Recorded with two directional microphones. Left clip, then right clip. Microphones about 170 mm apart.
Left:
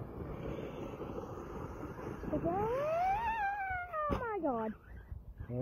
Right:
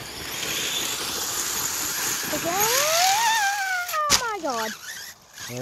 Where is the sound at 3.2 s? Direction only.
20° right (ahead or behind).